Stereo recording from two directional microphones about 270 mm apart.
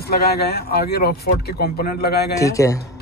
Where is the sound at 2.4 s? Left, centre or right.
Centre.